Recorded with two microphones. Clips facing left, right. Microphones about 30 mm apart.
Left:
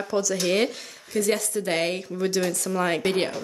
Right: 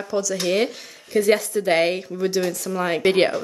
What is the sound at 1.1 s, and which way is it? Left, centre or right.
Speech, centre.